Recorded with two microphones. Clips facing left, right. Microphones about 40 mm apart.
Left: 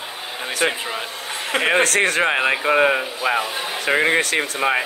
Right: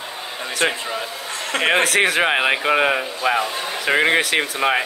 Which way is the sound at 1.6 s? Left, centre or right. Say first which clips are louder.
Right 1 dB; centre.